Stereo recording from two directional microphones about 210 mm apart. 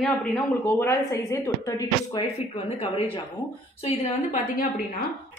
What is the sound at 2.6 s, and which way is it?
Speech, 25° left (ahead or behind).